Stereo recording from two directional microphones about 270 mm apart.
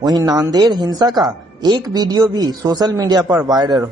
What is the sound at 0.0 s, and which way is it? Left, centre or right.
Speech, centre.